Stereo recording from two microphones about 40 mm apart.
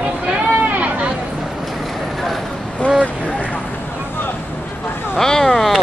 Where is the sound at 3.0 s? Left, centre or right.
Left.